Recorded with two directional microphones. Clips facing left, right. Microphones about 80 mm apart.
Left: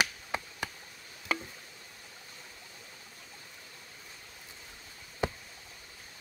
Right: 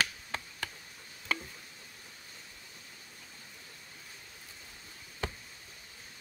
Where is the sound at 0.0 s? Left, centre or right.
Centre.